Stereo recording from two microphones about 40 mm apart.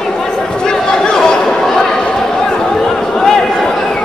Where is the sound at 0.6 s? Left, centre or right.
Centre.